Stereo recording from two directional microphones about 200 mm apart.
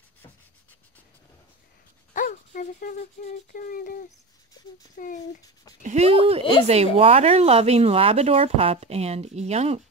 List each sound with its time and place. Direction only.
2.1 s speech: 40° left (ahead or behind)
4.9 s a child's voice: 40° left (ahead or behind)
5.8 s speech: 35° right (ahead or behind)